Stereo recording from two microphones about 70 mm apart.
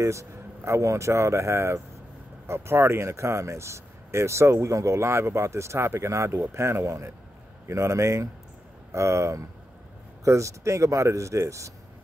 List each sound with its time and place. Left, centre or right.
0.0 s speech: right